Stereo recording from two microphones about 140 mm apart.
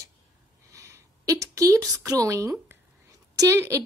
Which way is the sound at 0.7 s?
20° right (ahead or behind).